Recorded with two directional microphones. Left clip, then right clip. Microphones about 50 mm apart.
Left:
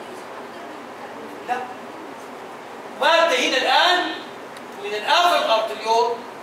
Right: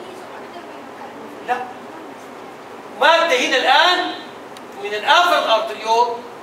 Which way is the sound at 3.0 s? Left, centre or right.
Right.